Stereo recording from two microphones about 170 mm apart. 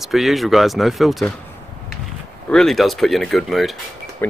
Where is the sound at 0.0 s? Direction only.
Centre (ahead or behind).